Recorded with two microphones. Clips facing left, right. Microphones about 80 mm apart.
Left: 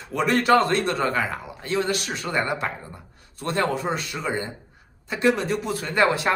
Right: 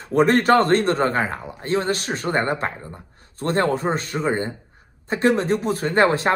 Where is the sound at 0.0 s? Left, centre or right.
Right.